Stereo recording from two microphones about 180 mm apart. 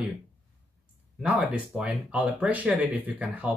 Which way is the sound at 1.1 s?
5° right (ahead or behind).